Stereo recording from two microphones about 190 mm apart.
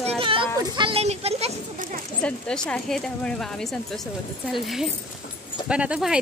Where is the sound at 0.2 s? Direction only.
25° right (ahead or behind).